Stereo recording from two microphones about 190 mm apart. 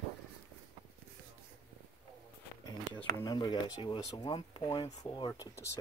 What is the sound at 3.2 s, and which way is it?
Speech, 20° left (ahead or behind).